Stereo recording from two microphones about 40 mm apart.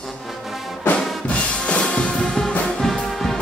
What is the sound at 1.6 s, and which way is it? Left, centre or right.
Music, left.